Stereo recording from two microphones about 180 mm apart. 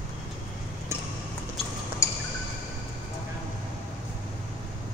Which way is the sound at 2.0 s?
15° left (ahead or behind).